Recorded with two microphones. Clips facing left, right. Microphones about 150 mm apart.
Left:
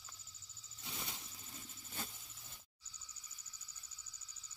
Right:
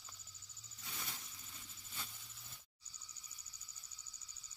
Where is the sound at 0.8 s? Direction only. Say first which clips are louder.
Left 2 dB; 25° left (ahead or behind).